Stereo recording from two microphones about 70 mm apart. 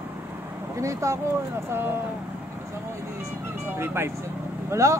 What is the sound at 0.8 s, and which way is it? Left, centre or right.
Speech, right.